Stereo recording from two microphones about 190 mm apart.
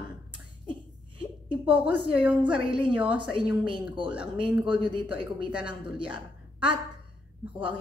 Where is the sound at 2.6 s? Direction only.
25° right (ahead or behind).